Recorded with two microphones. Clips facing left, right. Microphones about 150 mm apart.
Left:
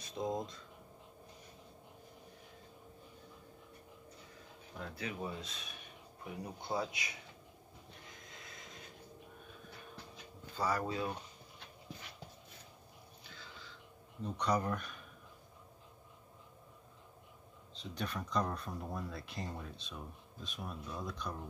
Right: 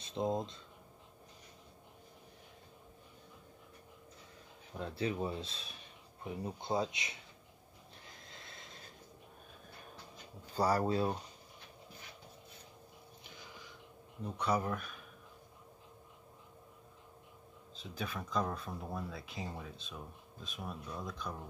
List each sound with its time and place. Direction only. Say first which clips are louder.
0.0 s speech: right 3 dB; 25° right (ahead or behind)
4.7 s speech: right 6 dB; 30° right (ahead or behind)
8.2 s vehicle: even; 30° right (ahead or behind)
10.5 s speech: right 5 dB; 35° right (ahead or behind)
13.2 s a sound: right 1 dB; 15° right (ahead or behind)
14.2 s speech: even; 5° right (ahead or behind)
17.7 s speech: left 1 dB; centre (ahead or behind)